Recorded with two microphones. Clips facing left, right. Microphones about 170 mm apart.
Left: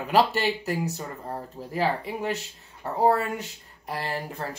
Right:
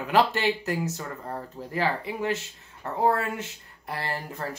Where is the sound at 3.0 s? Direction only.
15° left (ahead or behind).